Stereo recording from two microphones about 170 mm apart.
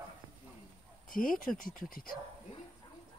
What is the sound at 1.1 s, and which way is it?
Speech, 55° left (ahead or behind).